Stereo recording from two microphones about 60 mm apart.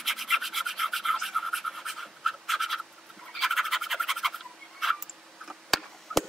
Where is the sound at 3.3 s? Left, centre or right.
Centre.